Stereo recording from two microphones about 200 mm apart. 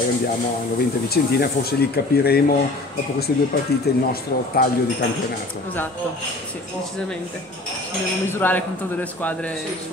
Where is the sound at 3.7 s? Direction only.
50° left (ahead or behind).